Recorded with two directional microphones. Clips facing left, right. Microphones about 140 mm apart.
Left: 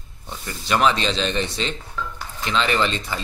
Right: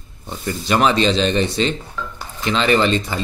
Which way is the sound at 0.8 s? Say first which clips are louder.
Right 4 dB; 50° right (ahead or behind).